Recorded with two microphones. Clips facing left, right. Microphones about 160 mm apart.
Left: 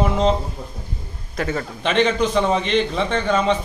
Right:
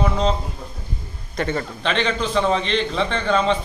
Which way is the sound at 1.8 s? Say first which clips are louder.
Left 5 dB; 15° left (ahead or behind).